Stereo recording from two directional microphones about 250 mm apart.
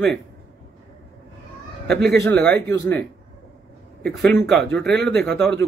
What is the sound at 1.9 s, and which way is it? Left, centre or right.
Speech, right.